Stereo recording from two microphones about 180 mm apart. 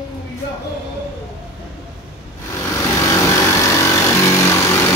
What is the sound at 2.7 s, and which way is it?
Vehicle, 20° left (ahead or behind).